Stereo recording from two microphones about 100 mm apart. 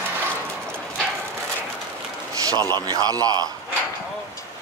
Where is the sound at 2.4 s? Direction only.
40° right (ahead or behind).